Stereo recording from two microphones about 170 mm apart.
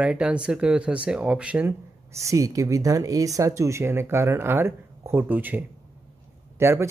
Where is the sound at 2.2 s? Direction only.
20° right (ahead or behind).